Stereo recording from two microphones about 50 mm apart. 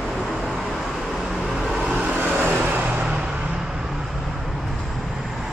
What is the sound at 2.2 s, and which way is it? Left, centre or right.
Vehicle, right.